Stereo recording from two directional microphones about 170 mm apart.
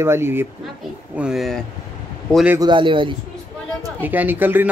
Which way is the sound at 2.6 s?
30° right (ahead or behind).